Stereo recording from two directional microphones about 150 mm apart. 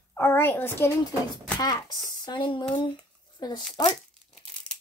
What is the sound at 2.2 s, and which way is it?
A woman's voice, 30° left (ahead or behind).